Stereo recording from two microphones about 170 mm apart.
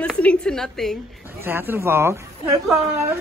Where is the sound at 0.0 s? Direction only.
5° left (ahead or behind).